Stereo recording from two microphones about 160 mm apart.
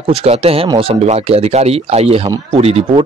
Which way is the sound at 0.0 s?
40° right (ahead or behind).